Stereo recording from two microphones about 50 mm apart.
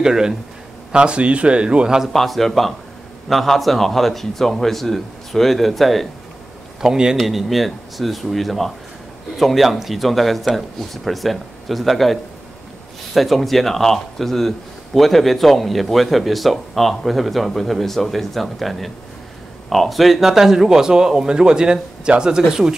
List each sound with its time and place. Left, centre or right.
0.0 s a man's voice: centre
2.1 s speech: centre
6.8 s a man's voice: centre
7.2 s a man's voice: centre